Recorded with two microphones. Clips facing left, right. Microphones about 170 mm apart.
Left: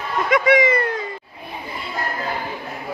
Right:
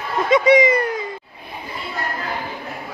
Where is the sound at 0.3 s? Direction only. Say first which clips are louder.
Right 3 dB; 20° right (ahead or behind).